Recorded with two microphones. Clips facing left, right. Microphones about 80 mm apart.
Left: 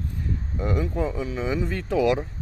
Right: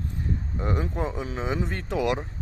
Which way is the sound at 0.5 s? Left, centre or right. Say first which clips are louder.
Left 4 dB; right.